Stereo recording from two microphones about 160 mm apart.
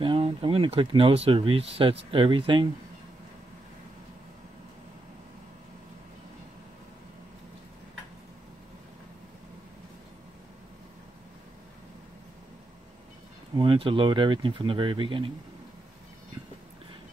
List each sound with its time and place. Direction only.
0.0 s speech: 35° right (ahead or behind)
13.6 s speech: 35° right (ahead or behind)